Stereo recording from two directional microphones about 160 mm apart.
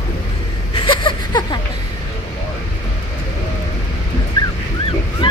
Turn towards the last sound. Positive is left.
turn(degrees=30)  # may be behind; listen again after turning